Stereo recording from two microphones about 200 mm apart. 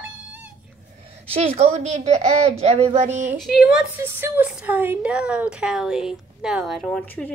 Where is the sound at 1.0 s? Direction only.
30° right (ahead or behind).